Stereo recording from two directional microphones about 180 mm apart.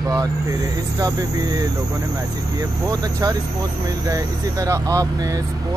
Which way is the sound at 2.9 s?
20° right (ahead or behind).